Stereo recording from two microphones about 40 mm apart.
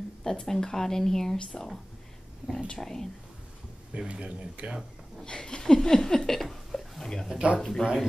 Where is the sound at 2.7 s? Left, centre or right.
Centre.